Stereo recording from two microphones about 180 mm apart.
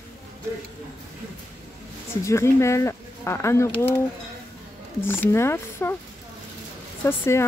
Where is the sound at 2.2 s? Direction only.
15° left (ahead or behind).